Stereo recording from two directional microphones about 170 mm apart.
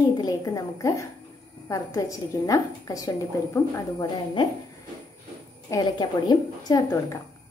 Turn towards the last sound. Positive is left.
turn(degrees=20)  # may be behind; listen again after turning